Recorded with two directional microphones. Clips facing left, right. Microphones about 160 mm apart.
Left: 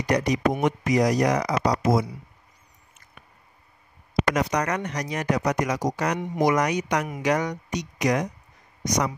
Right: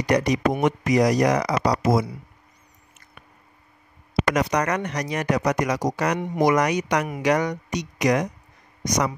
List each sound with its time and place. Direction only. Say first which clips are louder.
0.0 s speech: right 2 dB; 80° right
4.4 s speech: right 2 dB; 80° right